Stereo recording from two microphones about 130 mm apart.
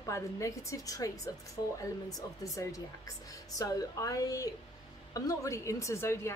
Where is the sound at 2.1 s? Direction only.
25° left (ahead or behind).